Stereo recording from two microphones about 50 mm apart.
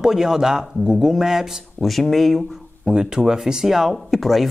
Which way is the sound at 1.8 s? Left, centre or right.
Centre.